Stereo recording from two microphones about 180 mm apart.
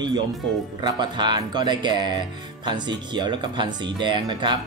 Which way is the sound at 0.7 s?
25° right (ahead or behind).